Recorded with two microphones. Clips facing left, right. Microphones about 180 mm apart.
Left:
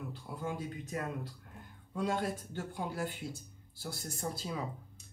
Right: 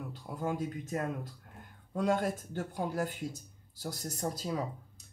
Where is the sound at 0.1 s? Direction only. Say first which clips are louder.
Right 7 dB; 40° right (ahead or behind).